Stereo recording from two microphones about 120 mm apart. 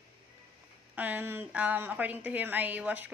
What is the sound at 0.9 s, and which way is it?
A woman's voice, 15° right (ahead or behind).